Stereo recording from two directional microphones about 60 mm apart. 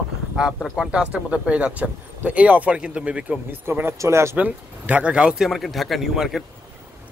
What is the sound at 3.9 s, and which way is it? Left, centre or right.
Speech, right.